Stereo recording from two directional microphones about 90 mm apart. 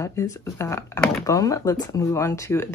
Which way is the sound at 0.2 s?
35° left (ahead or behind).